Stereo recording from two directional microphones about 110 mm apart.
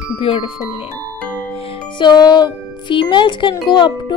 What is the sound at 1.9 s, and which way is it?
Speech, 40° left (ahead or behind).